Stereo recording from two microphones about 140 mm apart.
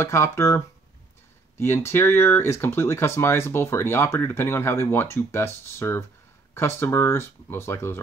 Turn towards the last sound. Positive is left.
turn(degrees=15)  # may be behind; listen again after turning